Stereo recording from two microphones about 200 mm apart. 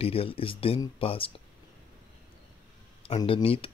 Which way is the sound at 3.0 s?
30° left (ahead or behind).